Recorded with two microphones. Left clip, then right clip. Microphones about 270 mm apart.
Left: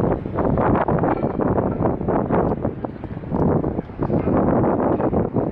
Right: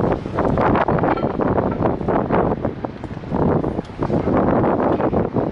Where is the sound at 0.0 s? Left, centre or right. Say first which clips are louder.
Right 2 dB; left.